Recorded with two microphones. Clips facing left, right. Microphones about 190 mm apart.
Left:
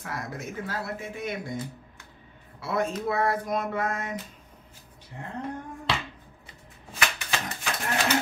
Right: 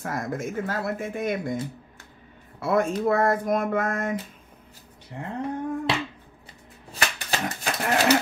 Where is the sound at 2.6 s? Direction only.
50° right (ahead or behind).